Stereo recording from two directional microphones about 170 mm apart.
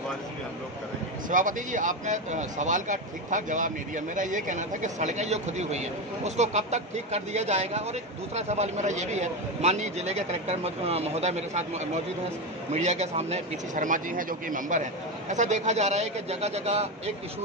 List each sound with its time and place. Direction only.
1.3 s a man's voice: 50° right (ahead or behind)